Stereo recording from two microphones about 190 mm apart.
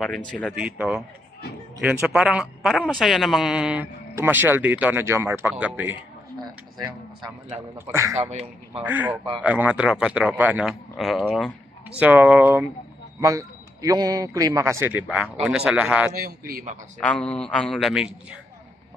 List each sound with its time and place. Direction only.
0.3 s a man's voice: 5° left (ahead or behind)
0.6 s a man's voice: 5° right (ahead or behind)
7.2 s a man's voice: 15° right (ahead or behind)
8.2 s a man's voice: 35° right (ahead or behind)
8.8 s a man's voice: 10° right (ahead or behind)
16.1 s a man's voice: 50° right (ahead or behind)
17.0 s a man's voice: 5° left (ahead or behind)